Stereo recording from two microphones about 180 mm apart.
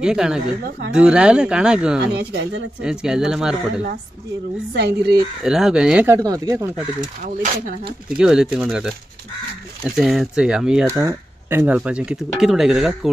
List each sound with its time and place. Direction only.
0.0 s speech: 5° right (ahead or behind)
0.7 s speech: 75° right (ahead or behind)
0.9 s speech: 5° right (ahead or behind)
2.0 s speech: 70° right (ahead or behind)
2.8 s speech: 5° right (ahead or behind)
4.7 s speech: 65° right (ahead or behind)
5.4 s speech: centre (ahead or behind)
6.1 s speech: 20° right (ahead or behind)
7.2 s speech: 45° right (ahead or behind)
8.2 s speech: 5° right (ahead or behind)
10.9 s speech: 15° right (ahead or behind)